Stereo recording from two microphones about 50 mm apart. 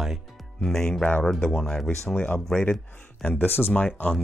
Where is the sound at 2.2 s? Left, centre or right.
Left.